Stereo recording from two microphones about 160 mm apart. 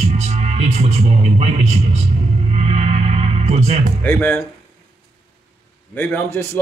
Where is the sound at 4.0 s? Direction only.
10° left (ahead or behind).